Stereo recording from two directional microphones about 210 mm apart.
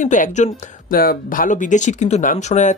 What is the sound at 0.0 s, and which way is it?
Speech, 35° left (ahead or behind).